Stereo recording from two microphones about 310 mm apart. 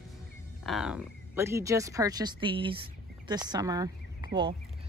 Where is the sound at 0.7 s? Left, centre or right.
Centre.